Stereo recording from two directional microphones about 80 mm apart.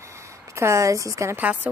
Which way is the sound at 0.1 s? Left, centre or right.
Right.